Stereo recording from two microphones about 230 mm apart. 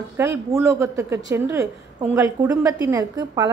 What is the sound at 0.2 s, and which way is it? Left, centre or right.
A woman's voice, centre.